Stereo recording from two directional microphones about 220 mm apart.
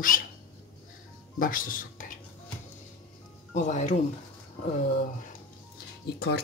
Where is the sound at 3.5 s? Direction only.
35° left (ahead or behind).